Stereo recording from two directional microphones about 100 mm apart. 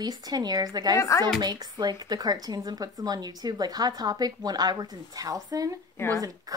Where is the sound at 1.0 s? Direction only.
30° left (ahead or behind).